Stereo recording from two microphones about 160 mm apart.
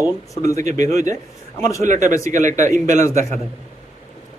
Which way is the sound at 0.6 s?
50° right (ahead or behind).